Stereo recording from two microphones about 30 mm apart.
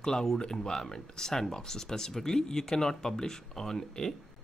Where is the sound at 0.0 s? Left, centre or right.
Centre.